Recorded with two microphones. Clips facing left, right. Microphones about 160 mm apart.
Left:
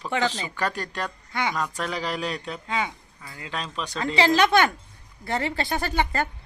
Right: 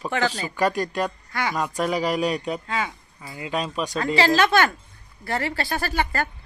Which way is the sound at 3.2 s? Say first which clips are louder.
Right 7 dB; 15° right (ahead or behind).